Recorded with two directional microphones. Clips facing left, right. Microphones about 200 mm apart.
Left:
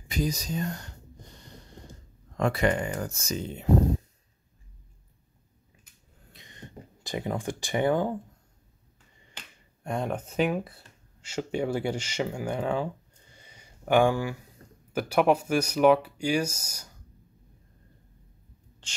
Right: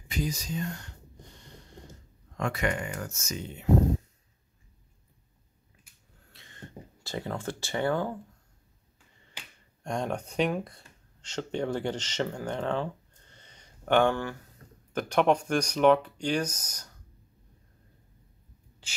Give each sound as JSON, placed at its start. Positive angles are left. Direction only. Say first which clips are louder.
{"t": 0.1, "sound": "speech", "louder": "left 3 dB", "side_deg": 40}
{"t": 2.3, "sound": "speech", "louder": "left 5 dB", "side_deg": 35}
{"t": 6.3, "sound": "a sound", "louder": "even", "side_deg": 15}
{"t": 9.8, "sound": "speech", "louder": "left 1 dB", "side_deg": 0}
{"t": 18.8, "sound": "writing", "louder": "even", "side_deg": -5}